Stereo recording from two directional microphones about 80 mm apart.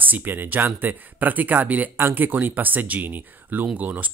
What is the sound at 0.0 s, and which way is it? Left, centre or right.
Speech, right.